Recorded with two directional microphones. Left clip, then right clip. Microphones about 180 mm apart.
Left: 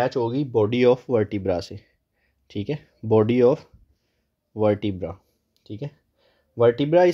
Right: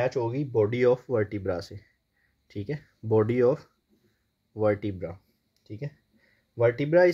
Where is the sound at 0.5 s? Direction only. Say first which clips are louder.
Left 4 dB; 30° left (ahead or behind).